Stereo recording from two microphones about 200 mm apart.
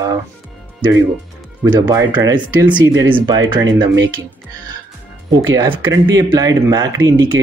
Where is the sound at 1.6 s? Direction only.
20° right (ahead or behind).